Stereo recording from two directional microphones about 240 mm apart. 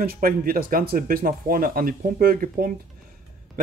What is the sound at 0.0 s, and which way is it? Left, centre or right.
Speech, right.